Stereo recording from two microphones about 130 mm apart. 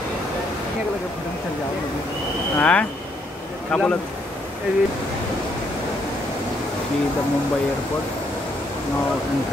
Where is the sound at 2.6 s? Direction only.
10° left (ahead or behind).